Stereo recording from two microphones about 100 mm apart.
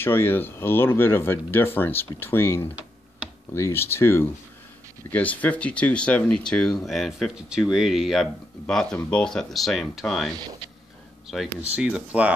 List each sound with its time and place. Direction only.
0.0 s speech: 20° left (ahead or behind)
5.1 s speech: 15° left (ahead or behind)
11.7 s speech: 10° right (ahead or behind)